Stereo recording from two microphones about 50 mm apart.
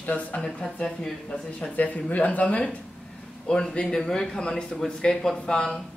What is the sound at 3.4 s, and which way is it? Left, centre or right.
A woman's voice, centre.